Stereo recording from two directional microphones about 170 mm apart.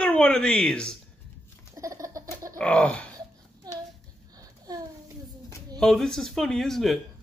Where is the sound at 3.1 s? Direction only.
20° right (ahead or behind).